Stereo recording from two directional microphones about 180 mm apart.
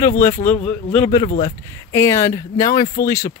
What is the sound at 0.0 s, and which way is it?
Speech, 15° left (ahead or behind).